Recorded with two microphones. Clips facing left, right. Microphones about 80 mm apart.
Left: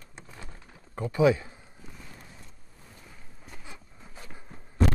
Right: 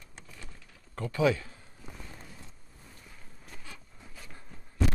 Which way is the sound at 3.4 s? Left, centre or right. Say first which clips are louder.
Left 2 dB; centre.